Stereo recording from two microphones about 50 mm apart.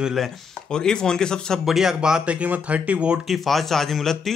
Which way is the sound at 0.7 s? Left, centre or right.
Centre.